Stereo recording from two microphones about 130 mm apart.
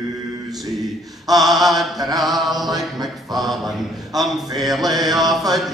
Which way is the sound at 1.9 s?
30° right (ahead or behind).